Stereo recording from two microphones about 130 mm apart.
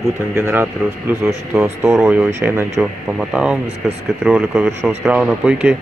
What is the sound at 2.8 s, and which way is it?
Speech, 5° right (ahead or behind).